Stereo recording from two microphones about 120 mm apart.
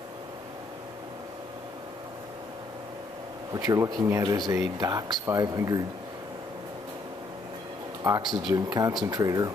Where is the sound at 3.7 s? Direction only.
35° right (ahead or behind).